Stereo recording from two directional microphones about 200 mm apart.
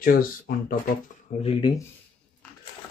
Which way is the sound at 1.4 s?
25° left (ahead or behind).